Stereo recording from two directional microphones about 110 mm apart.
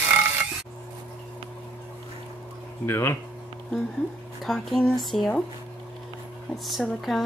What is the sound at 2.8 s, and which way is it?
Speech, 20° left (ahead or behind).